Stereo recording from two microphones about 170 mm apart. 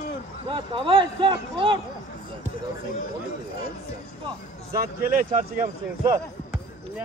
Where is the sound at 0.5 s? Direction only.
30° right (ahead or behind).